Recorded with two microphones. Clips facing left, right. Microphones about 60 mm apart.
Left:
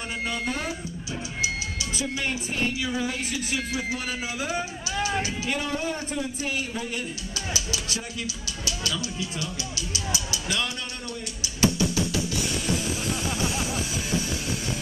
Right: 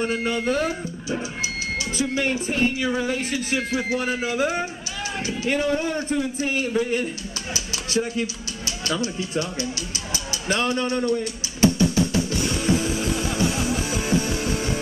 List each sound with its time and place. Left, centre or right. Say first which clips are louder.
0.0 s speech: right 6 dB; right
11.6 s music: right 5 dB; right